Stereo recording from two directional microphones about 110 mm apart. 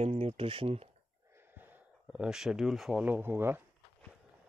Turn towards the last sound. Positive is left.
turn(degrees=-20)  # may be behind; listen again after turning